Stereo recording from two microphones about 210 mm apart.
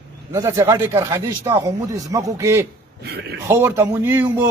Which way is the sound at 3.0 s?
50° right (ahead or behind).